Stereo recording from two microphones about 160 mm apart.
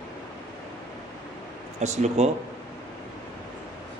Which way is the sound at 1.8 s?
45° right (ahead or behind).